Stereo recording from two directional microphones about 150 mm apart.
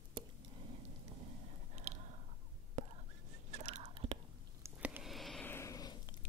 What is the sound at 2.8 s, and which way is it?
Whispering, 55° right (ahead or behind).